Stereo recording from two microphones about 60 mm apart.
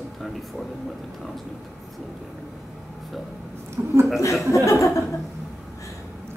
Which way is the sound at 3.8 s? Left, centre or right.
Right.